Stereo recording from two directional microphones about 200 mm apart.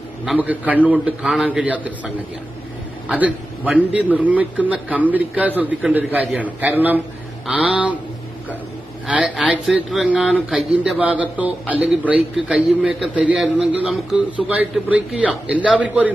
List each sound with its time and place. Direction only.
0.2 s speech: 5° right (ahead or behind)
9.0 s speech: 5° right (ahead or behind)